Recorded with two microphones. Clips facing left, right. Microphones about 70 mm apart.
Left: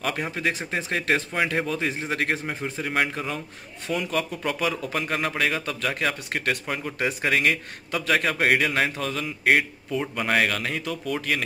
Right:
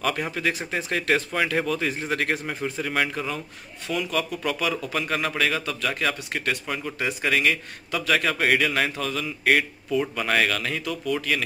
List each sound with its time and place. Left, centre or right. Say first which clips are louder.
0.0 s a man's voice: right 1 dB; centre
6.3 s a man's voice: left 1 dB; left